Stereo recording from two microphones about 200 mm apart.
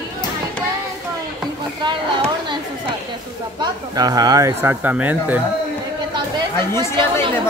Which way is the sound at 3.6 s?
20° right (ahead or behind).